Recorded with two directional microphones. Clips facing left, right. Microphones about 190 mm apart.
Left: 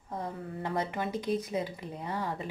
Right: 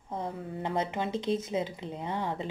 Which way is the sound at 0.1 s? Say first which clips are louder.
Right 2 dB; 20° right (ahead or behind).